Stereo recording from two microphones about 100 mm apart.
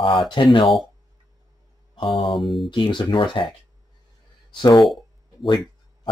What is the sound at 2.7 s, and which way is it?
Speech, 55° left (ahead or behind).